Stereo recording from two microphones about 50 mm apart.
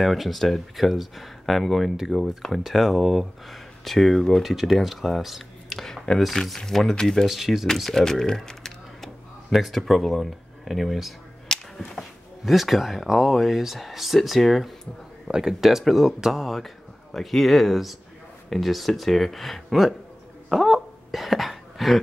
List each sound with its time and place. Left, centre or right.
0.0 s speech: centre
7.2 s speech: centre
7.6 s speech: centre
8.0 s typing: centre
9.5 s speech: centre
11.5 s a sound: centre
11.9 s speech: centre
15.2 s speech: centre
15.6 s speech: centre
20.4 s a sound: centre